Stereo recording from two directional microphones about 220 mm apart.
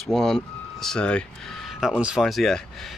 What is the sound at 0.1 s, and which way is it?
Speech, centre (ahead or behind).